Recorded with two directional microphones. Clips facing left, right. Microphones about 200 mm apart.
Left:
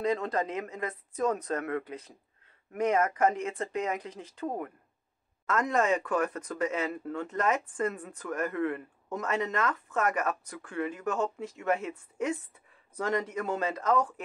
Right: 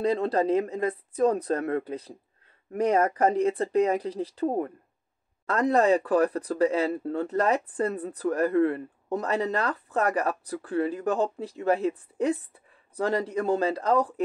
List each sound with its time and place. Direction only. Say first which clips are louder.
0.0 s speech: right 5 dB; 35° right (ahead or behind)